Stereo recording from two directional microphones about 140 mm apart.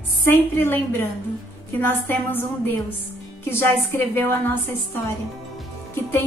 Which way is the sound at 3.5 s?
15° left (ahead or behind).